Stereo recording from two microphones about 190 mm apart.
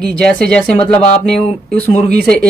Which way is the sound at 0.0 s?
5° left (ahead or behind).